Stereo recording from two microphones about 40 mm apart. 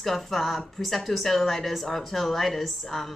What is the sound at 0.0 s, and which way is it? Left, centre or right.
A woman's voice, centre.